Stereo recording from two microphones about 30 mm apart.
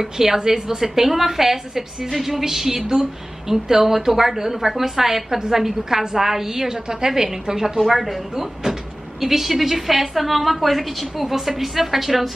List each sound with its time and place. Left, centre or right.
0.0 s a woman's voice: centre
7.9 s a woman's voice: centre